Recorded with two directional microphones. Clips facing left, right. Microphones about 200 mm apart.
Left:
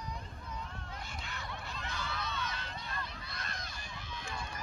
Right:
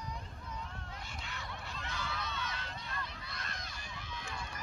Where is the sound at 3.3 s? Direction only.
35° left (ahead or behind).